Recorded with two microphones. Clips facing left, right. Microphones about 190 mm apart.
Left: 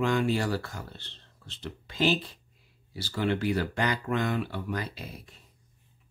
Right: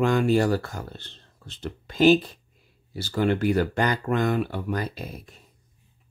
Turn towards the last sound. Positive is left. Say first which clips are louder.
# right 6 dB
turn(degrees=-45)  # may be behind; listen again after turning